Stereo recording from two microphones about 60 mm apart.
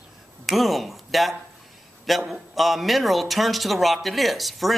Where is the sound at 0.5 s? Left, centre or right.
Centre.